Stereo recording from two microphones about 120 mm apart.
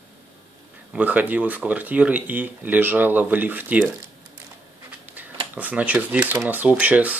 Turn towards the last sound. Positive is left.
turn(degrees=-10)  # may be behind; listen again after turning